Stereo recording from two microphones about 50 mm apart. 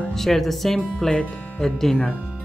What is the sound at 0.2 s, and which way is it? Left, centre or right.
Speech, centre.